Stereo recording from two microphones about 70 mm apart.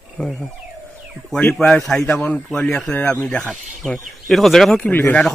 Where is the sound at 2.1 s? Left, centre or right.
Centre.